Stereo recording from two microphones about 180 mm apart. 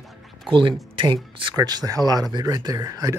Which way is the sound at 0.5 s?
25° right (ahead or behind).